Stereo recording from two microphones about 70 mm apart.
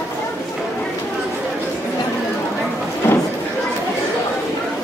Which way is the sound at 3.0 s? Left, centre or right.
Left.